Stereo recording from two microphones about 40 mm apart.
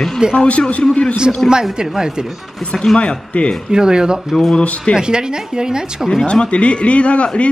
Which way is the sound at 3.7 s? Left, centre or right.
Centre.